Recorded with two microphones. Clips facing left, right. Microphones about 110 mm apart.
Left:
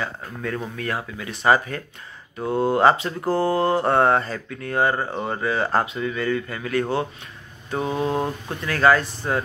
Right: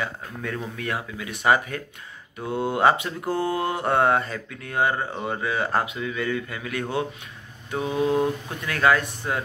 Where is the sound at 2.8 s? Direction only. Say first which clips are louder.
Left 1 dB; 10° right (ahead or behind).